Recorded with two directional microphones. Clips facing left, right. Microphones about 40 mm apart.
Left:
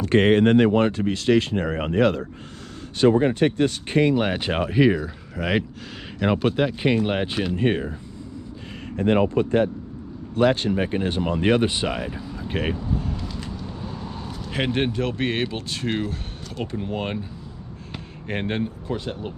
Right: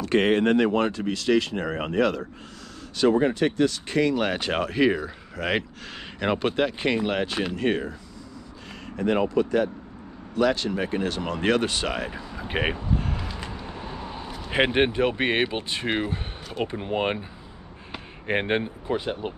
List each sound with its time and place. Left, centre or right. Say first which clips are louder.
0.0 s speech: left 4 dB; left
4.1 s speech: left 2 dB; centre
7.1 s speech: left 2 dB; centre
8.9 s speech: left 3 dB; left; by 11.9 s centre
12.1 s speech: left 1 dB; centre
12.9 s vehicle: even; right
14.5 s speech: right 3 dB; right